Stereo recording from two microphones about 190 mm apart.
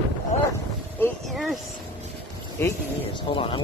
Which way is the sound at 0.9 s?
10° left (ahead or behind).